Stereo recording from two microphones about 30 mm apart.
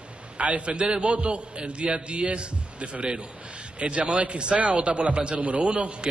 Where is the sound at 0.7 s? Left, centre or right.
Right.